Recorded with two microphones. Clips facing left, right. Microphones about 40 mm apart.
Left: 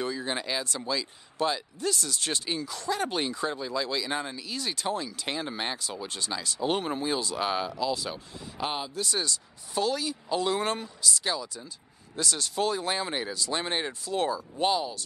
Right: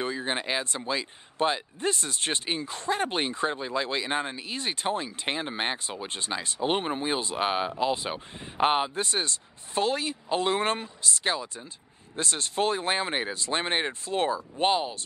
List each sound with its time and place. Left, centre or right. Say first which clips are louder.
0.0 s speech: right 1 dB; right